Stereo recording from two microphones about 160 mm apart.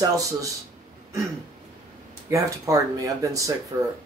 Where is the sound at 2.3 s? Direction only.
20° right (ahead or behind).